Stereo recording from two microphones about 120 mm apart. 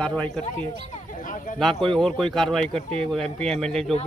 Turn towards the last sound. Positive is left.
turn(degrees=5)  # may be behind; listen again after turning